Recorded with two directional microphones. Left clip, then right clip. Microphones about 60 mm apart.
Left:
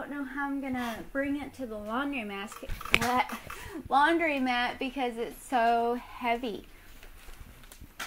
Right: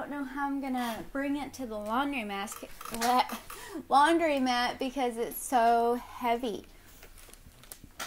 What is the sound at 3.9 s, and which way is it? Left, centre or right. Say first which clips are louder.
A woman's voice: right 1 dB; right.